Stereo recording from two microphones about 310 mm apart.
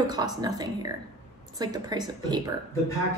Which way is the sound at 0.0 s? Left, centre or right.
Centre.